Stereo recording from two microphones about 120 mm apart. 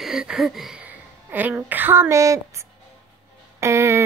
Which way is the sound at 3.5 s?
25° right (ahead or behind).